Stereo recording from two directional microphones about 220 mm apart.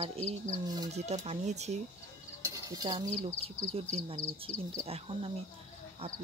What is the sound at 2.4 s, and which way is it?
Cutlery, 15° right (ahead or behind).